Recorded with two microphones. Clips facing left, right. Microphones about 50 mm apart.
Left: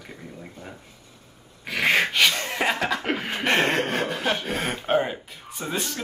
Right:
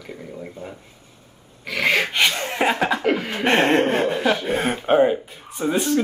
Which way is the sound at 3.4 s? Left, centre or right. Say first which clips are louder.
Right 4 dB; centre.